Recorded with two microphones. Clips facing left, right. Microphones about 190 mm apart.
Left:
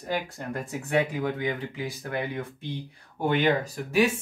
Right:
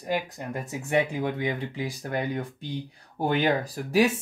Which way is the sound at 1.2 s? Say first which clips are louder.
Even; 35° right (ahead or behind).